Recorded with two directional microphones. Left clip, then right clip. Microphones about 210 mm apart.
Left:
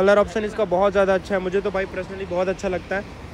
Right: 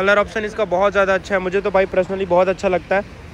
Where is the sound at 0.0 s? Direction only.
25° left (ahead or behind); by 3.1 s 10° left (ahead or behind).